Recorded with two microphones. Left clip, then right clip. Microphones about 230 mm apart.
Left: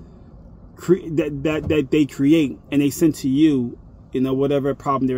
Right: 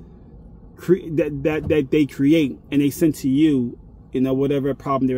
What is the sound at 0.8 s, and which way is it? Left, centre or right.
Speech, centre.